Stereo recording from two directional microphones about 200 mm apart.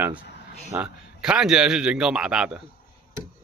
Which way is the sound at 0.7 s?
5° right (ahead or behind).